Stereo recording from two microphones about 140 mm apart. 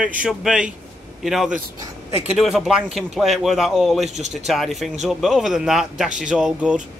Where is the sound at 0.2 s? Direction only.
5° right (ahead or behind).